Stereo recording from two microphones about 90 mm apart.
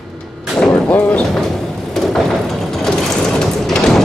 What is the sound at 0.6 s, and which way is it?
Artillery fire, 10° left (ahead or behind).